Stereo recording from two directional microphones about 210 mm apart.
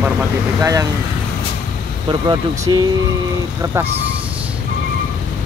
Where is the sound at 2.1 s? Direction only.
20° right (ahead or behind).